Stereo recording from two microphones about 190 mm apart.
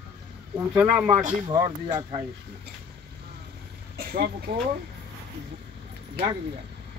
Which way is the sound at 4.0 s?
50° right (ahead or behind).